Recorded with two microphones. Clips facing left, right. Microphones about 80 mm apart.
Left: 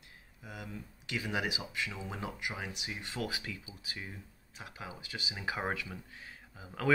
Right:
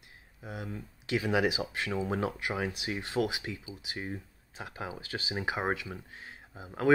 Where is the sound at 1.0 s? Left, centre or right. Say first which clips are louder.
Right 7 dB; right.